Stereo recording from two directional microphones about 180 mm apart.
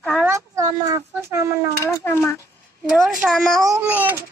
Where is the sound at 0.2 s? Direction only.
15° right (ahead or behind).